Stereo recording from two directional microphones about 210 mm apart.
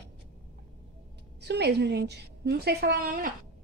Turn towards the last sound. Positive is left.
turn(degrees=-45)  # may be behind; listen again after turning